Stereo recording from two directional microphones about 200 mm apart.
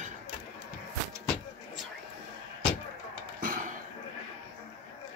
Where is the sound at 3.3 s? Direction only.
45° right (ahead or behind).